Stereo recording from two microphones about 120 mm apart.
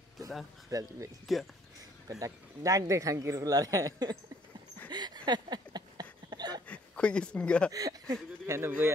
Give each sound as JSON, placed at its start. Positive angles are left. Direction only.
{"t": 0.7, "sound": "speech", "side_deg": -30}
{"t": 4.9, "sound": "a sound", "side_deg": -35}
{"t": 6.7, "sound": "speech", "side_deg": 10}
{"t": 7.7, "sound": "speech", "side_deg": -30}